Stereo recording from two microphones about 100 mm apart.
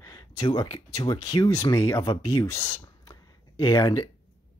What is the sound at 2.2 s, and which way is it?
Speech, 60° left (ahead or behind).